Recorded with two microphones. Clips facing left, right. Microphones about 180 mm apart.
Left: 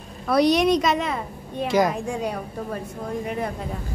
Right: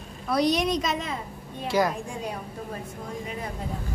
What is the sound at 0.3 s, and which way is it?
A woman's voice, 70° left (ahead or behind).